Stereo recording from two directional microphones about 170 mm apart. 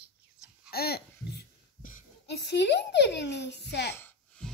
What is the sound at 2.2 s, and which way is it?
A child's voice, 80° left.